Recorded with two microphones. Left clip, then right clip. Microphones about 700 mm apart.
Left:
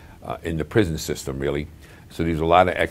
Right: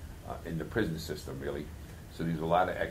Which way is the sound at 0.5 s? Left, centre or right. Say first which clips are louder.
Left 12 dB; left.